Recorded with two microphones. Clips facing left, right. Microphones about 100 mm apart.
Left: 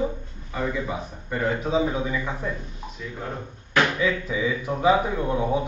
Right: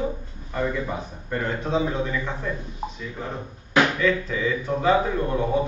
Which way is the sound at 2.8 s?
40° right (ahead or behind).